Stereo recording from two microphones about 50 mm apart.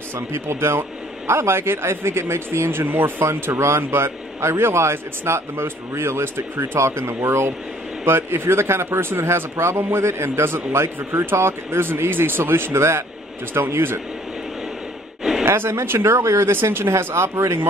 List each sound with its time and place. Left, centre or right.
0.1 s speech: right
15.4 s speech: right